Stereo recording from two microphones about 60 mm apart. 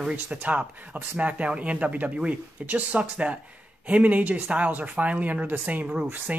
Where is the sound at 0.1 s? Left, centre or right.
Right.